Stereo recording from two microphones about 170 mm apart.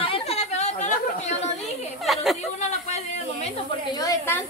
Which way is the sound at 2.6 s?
40° left (ahead or behind).